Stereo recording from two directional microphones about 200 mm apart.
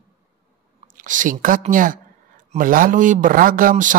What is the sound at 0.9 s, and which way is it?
A woman's voice, 40° right (ahead or behind).